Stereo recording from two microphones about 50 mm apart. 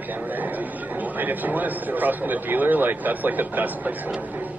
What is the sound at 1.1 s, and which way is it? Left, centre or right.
Speech, right.